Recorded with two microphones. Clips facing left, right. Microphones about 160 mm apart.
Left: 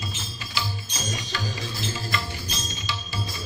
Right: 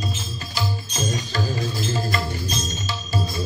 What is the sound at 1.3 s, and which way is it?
Music, 45° right (ahead or behind).